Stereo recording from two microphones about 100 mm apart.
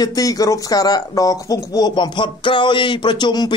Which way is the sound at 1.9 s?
50° left (ahead or behind).